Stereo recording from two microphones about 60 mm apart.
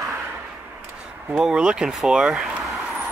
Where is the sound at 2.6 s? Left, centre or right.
Centre.